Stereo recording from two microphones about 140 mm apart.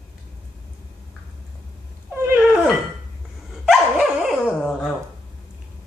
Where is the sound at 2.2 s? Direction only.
15° right (ahead or behind).